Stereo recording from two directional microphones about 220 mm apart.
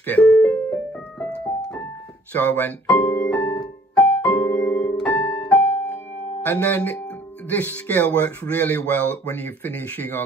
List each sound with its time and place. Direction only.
0.0 s music: 5° left (ahead or behind)
2.3 s speech: 10° left (ahead or behind)
3.2 s keyboard: 5° left (ahead or behind)
5.6 s music: 30° left (ahead or behind)
6.4 s speech: 10° left (ahead or behind)